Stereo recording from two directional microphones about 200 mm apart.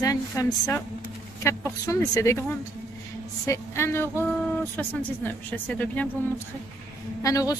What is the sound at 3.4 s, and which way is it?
Speech, 15° left (ahead or behind).